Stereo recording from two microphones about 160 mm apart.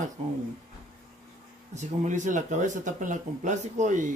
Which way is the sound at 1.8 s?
50° right (ahead or behind).